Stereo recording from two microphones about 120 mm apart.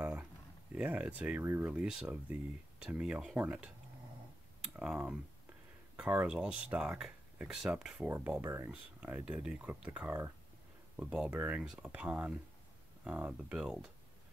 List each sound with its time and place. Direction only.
0.0 s a sound: 10° right (ahead or behind)
0.7 s speech: 10° right (ahead or behind)
1.4 s speech: 20° right (ahead or behind)
1.8 s speech: 10° right (ahead or behind)
4.7 s speech: 5° right (ahead or behind)
8.4 s speech: 20° right (ahead or behind)